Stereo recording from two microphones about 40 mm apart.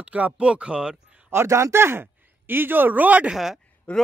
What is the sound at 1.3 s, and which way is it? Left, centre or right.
Speech, right.